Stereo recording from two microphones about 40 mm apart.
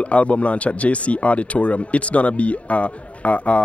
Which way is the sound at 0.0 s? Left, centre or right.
Left.